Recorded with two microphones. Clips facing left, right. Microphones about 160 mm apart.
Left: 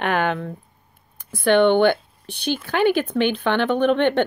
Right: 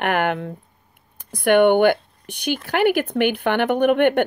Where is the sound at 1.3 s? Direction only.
15° right (ahead or behind).